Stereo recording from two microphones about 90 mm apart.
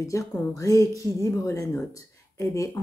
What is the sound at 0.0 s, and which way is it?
Speech, 35° left (ahead or behind).